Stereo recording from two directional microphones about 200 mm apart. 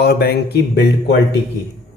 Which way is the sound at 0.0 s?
50° left (ahead or behind).